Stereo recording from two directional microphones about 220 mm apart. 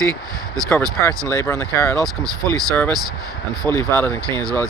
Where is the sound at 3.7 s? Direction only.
10° left (ahead or behind).